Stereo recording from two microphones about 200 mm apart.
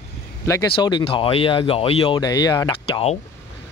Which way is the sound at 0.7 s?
25° left (ahead or behind).